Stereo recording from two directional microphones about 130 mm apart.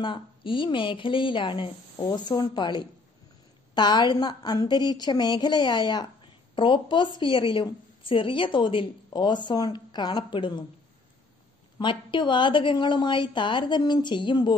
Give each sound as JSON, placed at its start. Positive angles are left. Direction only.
{"t": 0.0, "sound": "a woman's voice", "side_deg": 40}
{"t": 11.8, "sound": "a woman's voice", "side_deg": 40}